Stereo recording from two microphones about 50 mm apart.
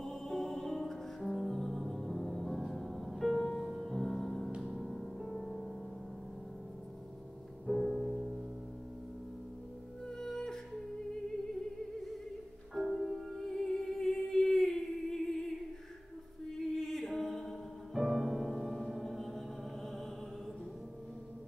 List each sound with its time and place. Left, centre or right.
0.0 s music: centre
7.6 s music: centre
10.0 s music: centre
12.7 s music: centre
16.5 s music: centre